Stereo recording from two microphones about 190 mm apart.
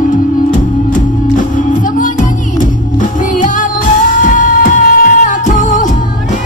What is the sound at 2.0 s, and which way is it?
Music, 45° left (ahead or behind).